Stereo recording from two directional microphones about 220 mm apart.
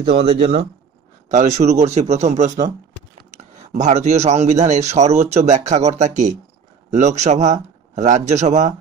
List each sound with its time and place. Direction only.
0.0 s a man's voice: 25° right (ahead or behind)